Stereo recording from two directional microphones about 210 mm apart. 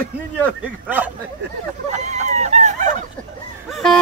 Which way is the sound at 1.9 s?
35° right (ahead or behind).